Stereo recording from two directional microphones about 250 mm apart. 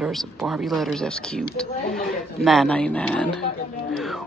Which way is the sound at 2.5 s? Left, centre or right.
Centre.